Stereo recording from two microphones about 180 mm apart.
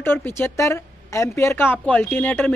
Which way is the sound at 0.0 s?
10° left (ahead or behind).